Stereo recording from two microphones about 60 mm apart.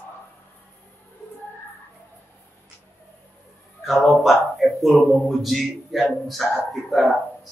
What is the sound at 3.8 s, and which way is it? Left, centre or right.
Speech, centre.